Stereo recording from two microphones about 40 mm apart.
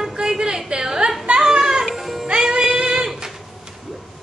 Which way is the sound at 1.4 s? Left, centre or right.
Centre.